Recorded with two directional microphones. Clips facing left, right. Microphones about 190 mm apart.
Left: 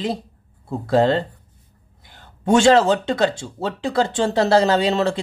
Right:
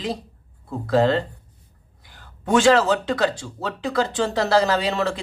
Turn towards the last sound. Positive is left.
turn(degrees=25)  # may be behind; listen again after turning